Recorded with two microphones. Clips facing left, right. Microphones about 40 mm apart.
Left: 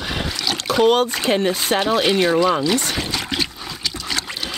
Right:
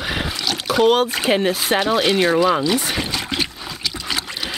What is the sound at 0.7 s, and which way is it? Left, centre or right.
Speech, centre.